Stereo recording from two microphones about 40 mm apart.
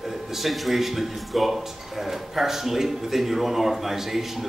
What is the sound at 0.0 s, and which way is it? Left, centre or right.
Speech, centre.